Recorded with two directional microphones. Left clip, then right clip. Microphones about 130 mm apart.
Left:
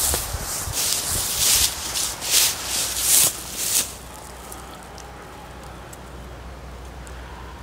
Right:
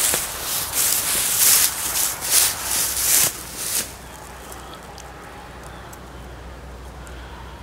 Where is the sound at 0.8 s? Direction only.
25° right (ahead or behind).